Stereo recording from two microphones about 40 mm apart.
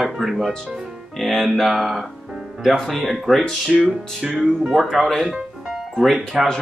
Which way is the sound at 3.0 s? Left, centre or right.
Centre.